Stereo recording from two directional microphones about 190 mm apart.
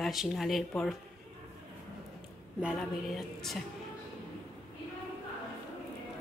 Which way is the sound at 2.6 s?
Centre (ahead or behind).